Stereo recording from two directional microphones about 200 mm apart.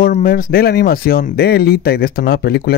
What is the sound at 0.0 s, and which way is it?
Speech, 45° left (ahead or behind).